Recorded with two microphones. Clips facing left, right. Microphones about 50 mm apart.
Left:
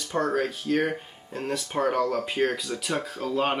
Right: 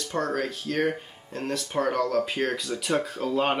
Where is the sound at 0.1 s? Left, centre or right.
Centre.